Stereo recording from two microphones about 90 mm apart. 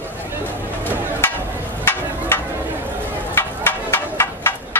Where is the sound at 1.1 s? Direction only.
25° left (ahead or behind).